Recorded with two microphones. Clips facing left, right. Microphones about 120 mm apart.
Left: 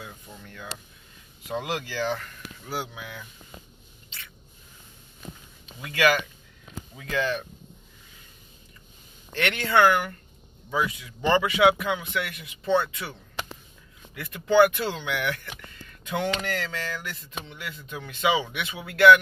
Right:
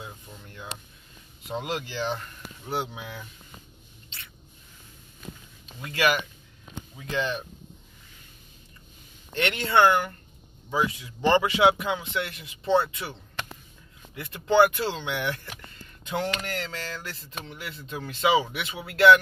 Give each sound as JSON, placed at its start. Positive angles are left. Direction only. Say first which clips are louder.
{"t": 0.0, "sound": "speech", "louder": "even", "side_deg": -25}
{"t": 5.8, "sound": "speech", "louder": "left 2 dB", "side_deg": -30}
{"t": 9.3, "sound": "speech", "louder": "even", "side_deg": -25}
{"t": 14.1, "sound": "speech", "louder": "left 1 dB", "side_deg": -25}